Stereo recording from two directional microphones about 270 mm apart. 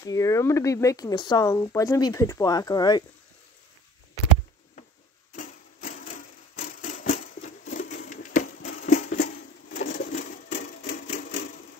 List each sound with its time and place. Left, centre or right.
0.0 s speech: centre
5.3 s a sound: left
10.5 s sewing machine: left